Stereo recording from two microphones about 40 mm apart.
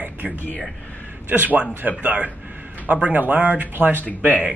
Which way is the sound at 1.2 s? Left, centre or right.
Right.